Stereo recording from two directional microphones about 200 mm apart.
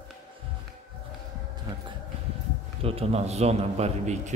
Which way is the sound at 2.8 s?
30° right (ahead or behind).